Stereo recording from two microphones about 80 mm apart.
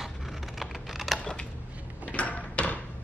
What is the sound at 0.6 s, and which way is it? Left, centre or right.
Computer keyboard, centre.